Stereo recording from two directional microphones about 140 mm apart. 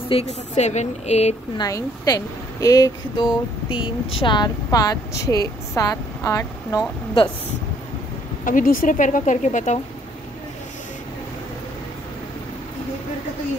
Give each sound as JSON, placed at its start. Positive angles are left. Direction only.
{"t": 0.1, "sound": "speech", "side_deg": 50}
{"t": 1.6, "sound": "a woman's voice", "side_deg": 25}
{"t": 3.6, "sound": "a woman's voice", "side_deg": 40}
{"t": 8.5, "sound": "speech", "side_deg": 75}